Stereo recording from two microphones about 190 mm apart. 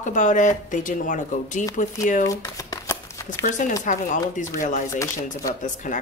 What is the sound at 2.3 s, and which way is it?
Shuffling cards, 20° left (ahead or behind).